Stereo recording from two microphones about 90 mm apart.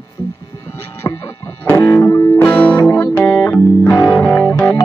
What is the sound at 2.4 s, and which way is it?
Music, 15° left (ahead or behind).